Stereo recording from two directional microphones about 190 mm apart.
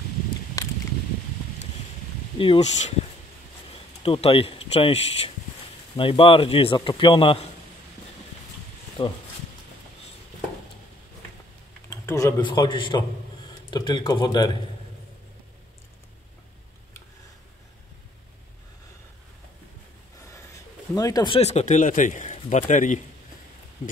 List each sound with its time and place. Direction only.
0.6 s a sound: 20° left (ahead or behind)
2.3 s speech: 30° left (ahead or behind)
4.0 s speech: 30° left (ahead or behind)
9.0 s speech: 30° left (ahead or behind)
11.9 s speech: 15° left (ahead or behind)
20.9 s speech: 20° left (ahead or behind)
21.4 s a man's voice: 35° left (ahead or behind)